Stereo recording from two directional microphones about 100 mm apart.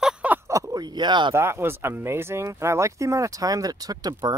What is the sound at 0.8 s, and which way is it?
Speech, 45° right (ahead or behind).